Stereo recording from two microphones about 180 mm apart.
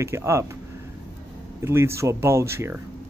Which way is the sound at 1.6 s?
15° right (ahead or behind).